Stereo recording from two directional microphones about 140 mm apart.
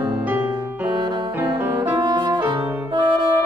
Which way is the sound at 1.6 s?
15° right (ahead or behind).